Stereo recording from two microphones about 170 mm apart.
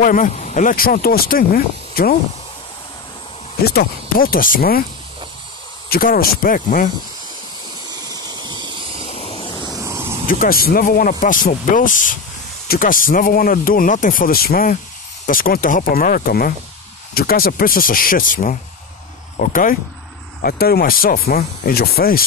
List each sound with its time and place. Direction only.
0.0 s speech: 50° left (ahead or behind)
3.6 s speech: 65° left (ahead or behind)
5.9 s speech: 60° left (ahead or behind)
7.9 s a sound: 20° right (ahead or behind)
9.0 s waves: 35° left (ahead or behind)
9.7 s vehicle: 20° right (ahead or behind)
10.2 s speech: 60° left (ahead or behind)
20.4 s speech: 65° left (ahead or behind)